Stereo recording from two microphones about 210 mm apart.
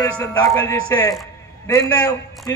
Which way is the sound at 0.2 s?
15° left (ahead or behind).